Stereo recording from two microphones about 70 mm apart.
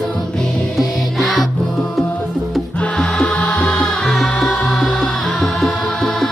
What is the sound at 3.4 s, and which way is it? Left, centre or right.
Music, centre.